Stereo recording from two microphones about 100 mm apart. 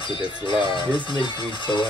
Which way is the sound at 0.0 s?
60° left (ahead or behind).